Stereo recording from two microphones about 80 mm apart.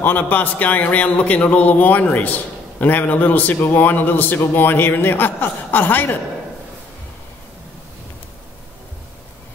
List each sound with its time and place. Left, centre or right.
0.0 s a man's voice: left